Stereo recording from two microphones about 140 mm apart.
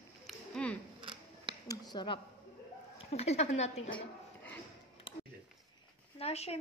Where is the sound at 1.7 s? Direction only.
30° left (ahead or behind).